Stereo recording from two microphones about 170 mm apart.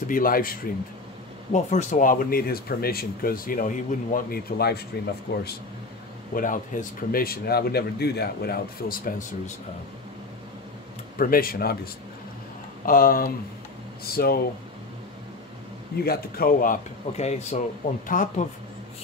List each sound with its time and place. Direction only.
0.0 s speech: 55° left (ahead or behind)
1.5 s speech: 45° left (ahead or behind); by 5.5 s 65° left (ahead or behind)
6.3 s speech: 50° left (ahead or behind)
11.1 s speech: 60° left (ahead or behind)
16.0 s speech: 60° left (ahead or behind)